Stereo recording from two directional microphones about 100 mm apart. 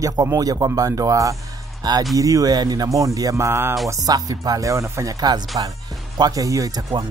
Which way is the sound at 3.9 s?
40° right (ahead or behind).